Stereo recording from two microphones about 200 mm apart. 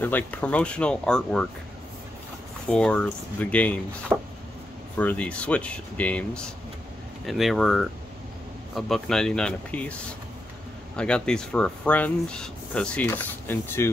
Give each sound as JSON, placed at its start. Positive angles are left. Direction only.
{"t": 0.0, "sound": "speech", "side_deg": 10}
{"t": 2.7, "sound": "speech", "side_deg": 5}
{"t": 4.9, "sound": "speech", "side_deg": 5}
{"t": 11.0, "sound": "speech", "side_deg": 5}